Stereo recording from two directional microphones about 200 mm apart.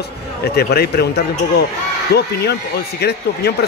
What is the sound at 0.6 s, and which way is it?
Speech, 55° left (ahead or behind).